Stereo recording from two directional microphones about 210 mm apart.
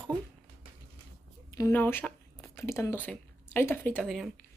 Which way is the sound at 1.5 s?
10° left (ahead or behind).